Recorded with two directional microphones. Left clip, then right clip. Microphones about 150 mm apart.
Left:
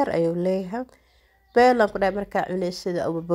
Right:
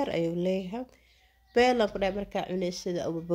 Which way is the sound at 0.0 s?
30° left (ahead or behind).